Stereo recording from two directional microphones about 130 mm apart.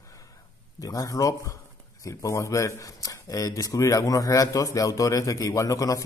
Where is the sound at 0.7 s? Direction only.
25° left (ahead or behind).